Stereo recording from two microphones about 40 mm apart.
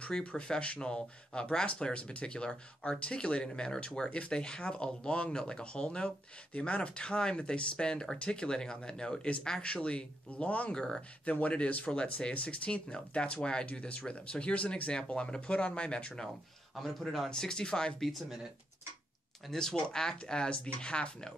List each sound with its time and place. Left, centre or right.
0.2 s speech: left
10.7 s speech: centre
11.0 s speech: left
16.8 s speech: centre
19.5 s speech: centre